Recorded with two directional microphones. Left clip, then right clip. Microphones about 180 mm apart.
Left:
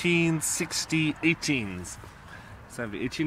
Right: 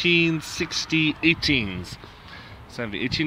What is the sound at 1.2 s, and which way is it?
Speech, 5° left (ahead or behind).